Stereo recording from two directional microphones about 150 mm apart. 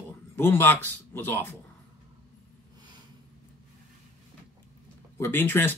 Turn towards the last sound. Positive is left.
turn(degrees=15)  # may be behind; listen again after turning